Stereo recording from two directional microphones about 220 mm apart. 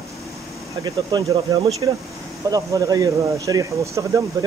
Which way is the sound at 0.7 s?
15° right (ahead or behind).